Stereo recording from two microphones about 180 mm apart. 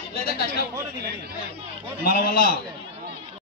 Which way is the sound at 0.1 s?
55° left (ahead or behind).